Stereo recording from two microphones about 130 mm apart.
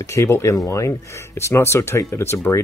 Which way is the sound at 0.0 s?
25° left (ahead or behind).